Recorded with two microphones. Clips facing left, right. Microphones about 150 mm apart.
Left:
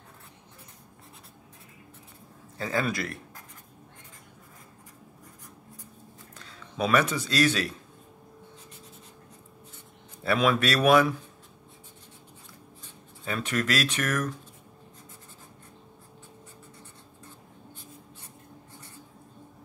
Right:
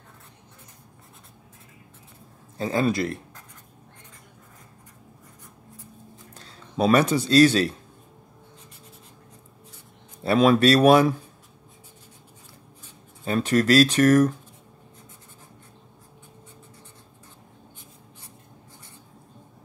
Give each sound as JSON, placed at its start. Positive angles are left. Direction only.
{"t": 2.5, "sound": "speech", "side_deg": -25}
{"t": 6.3, "sound": "speech", "side_deg": -30}
{"t": 10.2, "sound": "speech", "side_deg": -30}
{"t": 13.2, "sound": "speech", "side_deg": -35}